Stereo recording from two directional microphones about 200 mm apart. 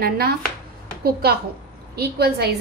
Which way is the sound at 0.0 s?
50° right (ahead or behind).